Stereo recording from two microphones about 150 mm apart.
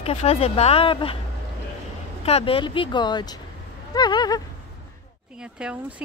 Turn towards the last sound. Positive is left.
turn(degrees=-10)  # may be behind; listen again after turning